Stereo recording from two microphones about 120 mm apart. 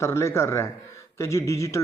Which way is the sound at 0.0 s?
20° left (ahead or behind).